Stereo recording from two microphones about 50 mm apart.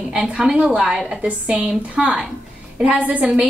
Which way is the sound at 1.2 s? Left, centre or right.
Right.